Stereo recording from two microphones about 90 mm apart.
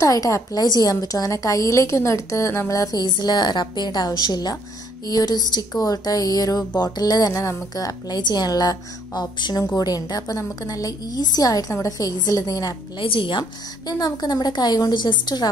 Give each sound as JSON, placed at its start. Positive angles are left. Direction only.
{"t": 0.0, "sound": "a woman's voice", "side_deg": 40}
{"t": 13.0, "sound": "speech", "side_deg": 75}
{"t": 13.8, "sound": "speech", "side_deg": 45}